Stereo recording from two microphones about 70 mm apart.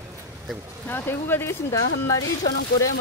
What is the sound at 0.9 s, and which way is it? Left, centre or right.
Speech, left.